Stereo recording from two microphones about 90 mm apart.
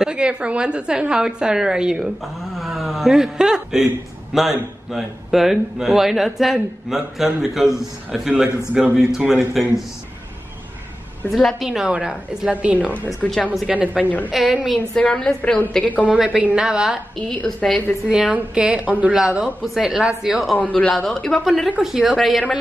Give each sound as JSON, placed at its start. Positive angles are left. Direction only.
{"t": 0.0, "sound": "a woman's voice", "side_deg": -10}
{"t": 11.2, "sound": "a woman's voice", "side_deg": 0}
{"t": 15.0, "sound": "a woman's voice", "side_deg": 10}
{"t": 16.3, "sound": "a woman's voice", "side_deg": -10}
{"t": 17.3, "sound": "a woman's voice", "side_deg": 10}
{"t": 18.0, "sound": "a woman's voice", "side_deg": -10}
{"t": 20.5, "sound": "a woman's voice", "side_deg": 15}
{"t": 20.9, "sound": "speech", "side_deg": 5}
{"t": 21.6, "sound": "speech", "side_deg": -10}